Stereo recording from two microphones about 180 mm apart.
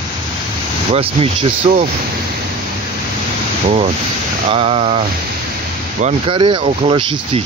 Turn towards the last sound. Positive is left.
turn(degrees=-30)  # may be behind; listen again after turning